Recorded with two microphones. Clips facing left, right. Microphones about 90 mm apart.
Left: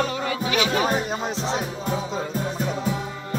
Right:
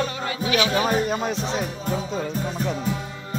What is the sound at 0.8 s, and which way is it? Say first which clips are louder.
Music: right 2 dB; 20° left (ahead or behind).